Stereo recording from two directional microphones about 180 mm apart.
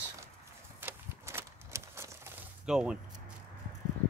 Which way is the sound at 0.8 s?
15° right (ahead or behind).